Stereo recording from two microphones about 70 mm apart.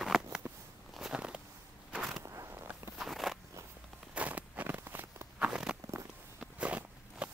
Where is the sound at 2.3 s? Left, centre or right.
Right.